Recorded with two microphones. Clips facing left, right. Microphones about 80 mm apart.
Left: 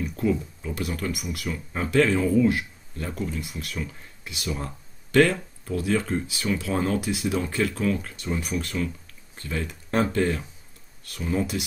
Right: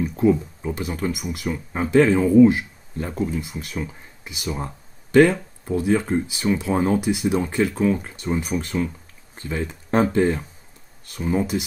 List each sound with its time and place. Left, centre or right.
0.0 s speech: right